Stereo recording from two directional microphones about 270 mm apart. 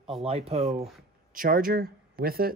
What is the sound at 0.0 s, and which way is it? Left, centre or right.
Speech, right.